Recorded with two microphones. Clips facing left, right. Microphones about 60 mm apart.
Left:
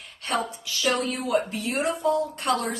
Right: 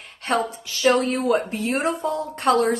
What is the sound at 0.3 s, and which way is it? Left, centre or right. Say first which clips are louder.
Speech: right 4 dB; right.